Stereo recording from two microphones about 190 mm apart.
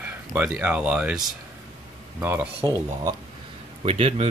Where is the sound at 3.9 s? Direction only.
30° right (ahead or behind).